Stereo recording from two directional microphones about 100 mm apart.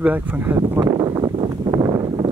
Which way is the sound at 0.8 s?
50° right (ahead or behind).